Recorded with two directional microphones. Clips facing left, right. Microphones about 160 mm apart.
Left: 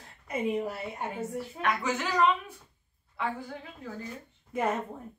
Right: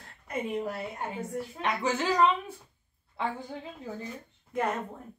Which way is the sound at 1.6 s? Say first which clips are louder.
Right 1 dB; 30° right (ahead or behind).